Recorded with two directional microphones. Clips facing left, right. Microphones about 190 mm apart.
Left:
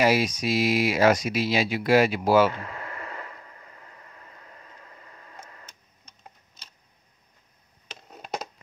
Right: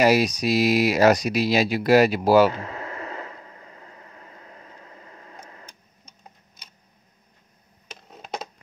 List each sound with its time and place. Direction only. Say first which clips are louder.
0.0 s speech: right 3 dB; 40° right (ahead or behind)
2.6 s radio: right 4 dB; 25° right (ahead or behind)
8.1 s a sound: even; 5° left (ahead or behind)